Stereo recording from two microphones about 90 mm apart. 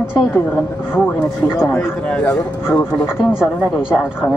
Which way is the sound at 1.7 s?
15° left (ahead or behind).